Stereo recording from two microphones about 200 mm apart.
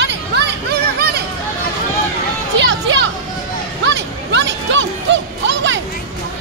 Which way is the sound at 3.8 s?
60° right (ahead or behind).